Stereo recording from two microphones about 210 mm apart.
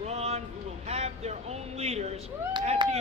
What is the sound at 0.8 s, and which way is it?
Cat, 30° right (ahead or behind).